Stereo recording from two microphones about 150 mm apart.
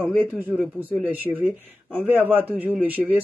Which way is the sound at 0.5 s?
10° right (ahead or behind).